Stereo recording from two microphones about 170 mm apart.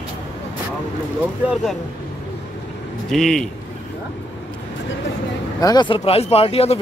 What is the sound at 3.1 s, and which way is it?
Speech, centre (ahead or behind).